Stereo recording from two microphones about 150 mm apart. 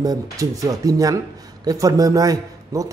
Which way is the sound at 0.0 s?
25° right (ahead or behind).